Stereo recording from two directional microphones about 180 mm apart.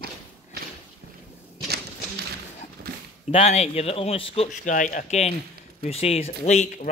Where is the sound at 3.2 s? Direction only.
35° left (ahead or behind).